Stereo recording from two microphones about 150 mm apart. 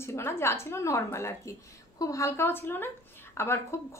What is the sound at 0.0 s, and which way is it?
A woman's voice, 15° left (ahead or behind).